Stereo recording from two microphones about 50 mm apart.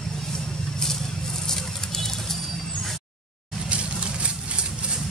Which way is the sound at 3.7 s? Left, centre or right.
Right.